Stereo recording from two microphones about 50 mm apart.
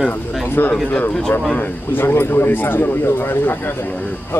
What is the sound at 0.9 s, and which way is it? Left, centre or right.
Speech, left.